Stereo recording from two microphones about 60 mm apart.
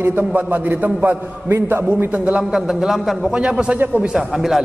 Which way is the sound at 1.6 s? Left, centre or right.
Right.